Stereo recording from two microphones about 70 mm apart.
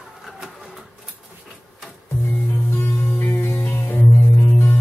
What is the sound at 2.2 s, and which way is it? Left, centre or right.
Music, left.